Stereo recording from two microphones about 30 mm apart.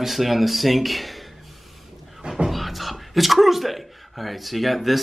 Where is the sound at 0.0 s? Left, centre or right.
Centre.